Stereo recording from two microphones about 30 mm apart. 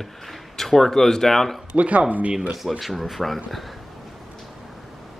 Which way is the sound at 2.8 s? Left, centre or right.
Centre.